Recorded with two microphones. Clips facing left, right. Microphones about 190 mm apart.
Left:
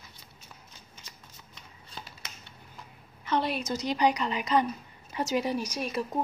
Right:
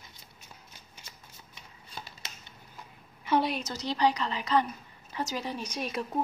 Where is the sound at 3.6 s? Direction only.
15° left (ahead or behind).